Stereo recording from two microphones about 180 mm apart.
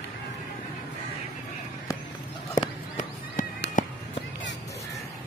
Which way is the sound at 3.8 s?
45° left (ahead or behind).